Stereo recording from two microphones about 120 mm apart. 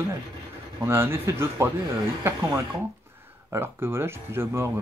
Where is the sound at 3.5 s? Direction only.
20° right (ahead or behind).